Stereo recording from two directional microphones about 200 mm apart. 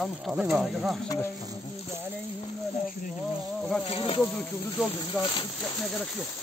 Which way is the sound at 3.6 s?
5° left (ahead or behind).